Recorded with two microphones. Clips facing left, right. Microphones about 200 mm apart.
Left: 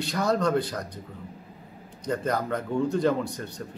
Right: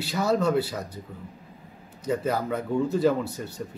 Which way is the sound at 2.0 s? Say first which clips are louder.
Right 1 dB; 5° right (ahead or behind).